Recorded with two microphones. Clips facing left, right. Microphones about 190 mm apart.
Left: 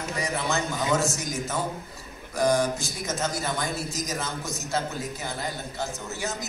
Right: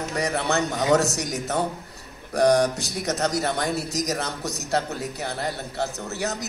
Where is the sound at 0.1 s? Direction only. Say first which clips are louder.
Right 4 dB; 65° right (ahead or behind).